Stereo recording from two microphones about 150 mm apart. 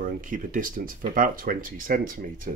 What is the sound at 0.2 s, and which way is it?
Speech, 65° right (ahead or behind).